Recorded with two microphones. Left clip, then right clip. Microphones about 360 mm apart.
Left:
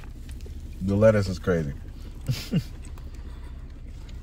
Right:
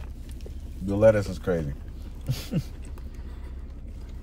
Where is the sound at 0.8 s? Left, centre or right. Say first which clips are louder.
Even; left.